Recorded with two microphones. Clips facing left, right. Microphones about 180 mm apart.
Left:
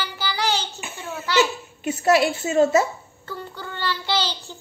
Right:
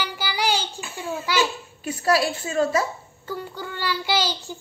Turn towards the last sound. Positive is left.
turn(degrees=-10)  # may be behind; listen again after turning